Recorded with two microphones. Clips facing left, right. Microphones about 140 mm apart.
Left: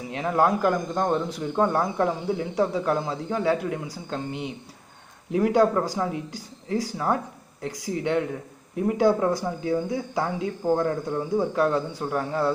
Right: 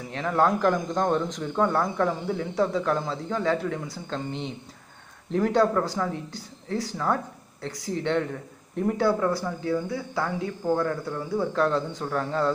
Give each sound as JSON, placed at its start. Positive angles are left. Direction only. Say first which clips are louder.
{"t": 0.1, "sound": "speech", "louder": "left 1 dB", "side_deg": 15}
{"t": 9.0, "sound": "speech", "louder": "left 4 dB", "side_deg": 20}